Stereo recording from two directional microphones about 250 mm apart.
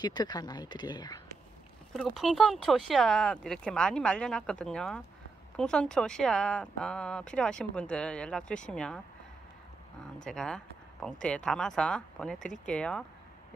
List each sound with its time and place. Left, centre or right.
0.0 s speech: centre
2.0 s speech: centre
10.2 s speech: centre